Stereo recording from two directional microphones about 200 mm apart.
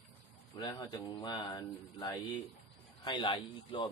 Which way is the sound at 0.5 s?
20° left (ahead or behind).